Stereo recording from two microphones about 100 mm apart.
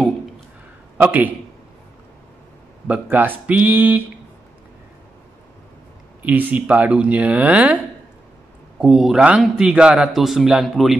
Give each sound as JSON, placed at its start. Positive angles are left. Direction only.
{"t": 0.9, "sound": "a man's voice", "side_deg": -20}
{"t": 2.9, "sound": "speech", "side_deg": -15}
{"t": 6.2, "sound": "a man's voice", "side_deg": -15}